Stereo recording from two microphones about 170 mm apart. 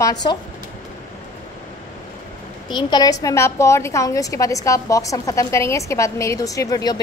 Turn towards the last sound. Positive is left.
turn(degrees=20)  # may be behind; listen again after turning